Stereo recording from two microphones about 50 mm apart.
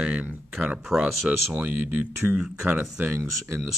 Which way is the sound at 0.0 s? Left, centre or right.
Right.